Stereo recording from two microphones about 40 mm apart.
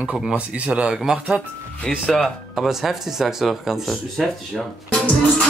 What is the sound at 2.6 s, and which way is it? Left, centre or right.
Speech, centre.